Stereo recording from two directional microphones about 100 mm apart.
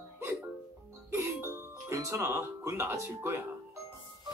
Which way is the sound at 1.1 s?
25° right (ahead or behind).